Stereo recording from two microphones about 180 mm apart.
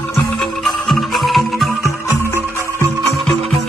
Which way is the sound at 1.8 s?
15° left (ahead or behind).